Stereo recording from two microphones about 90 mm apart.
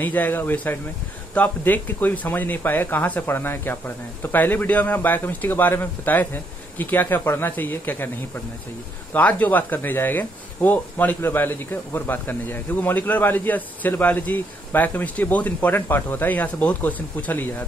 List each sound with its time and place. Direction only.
0.0 s speech: 20° left (ahead or behind)
9.1 s speech: 15° left (ahead or behind)